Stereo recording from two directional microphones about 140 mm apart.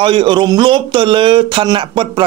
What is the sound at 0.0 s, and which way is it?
Speech, 35° right (ahead or behind).